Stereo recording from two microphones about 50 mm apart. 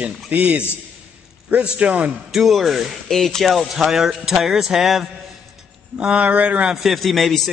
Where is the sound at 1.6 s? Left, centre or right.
Right.